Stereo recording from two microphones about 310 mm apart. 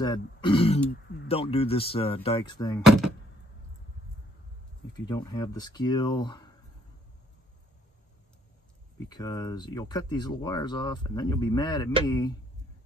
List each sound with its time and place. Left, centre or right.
0.0 s speech: centre
4.9 s speech: centre
9.1 s speech: centre